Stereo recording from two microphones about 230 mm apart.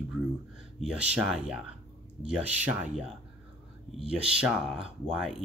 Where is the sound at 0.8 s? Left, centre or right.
Centre.